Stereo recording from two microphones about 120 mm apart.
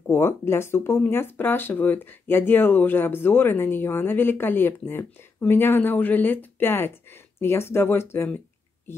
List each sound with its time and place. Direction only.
0.0 s speech: 20° left (ahead or behind)